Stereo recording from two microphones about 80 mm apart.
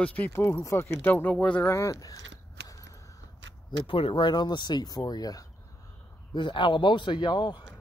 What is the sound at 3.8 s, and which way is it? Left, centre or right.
Speech, left.